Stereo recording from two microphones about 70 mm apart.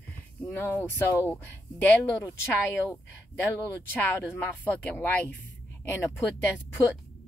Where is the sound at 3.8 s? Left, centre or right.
Left.